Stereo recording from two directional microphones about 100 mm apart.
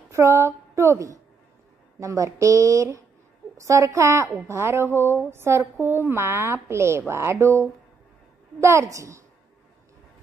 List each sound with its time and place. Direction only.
0.1 s a woman's voice: 30° right (ahead or behind)